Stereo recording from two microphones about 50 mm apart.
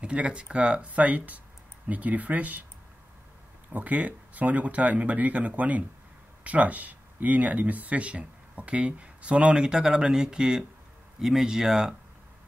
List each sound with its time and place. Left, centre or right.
0.0 s speech: right
3.7 s a man's voice: right; by 11.9 s centre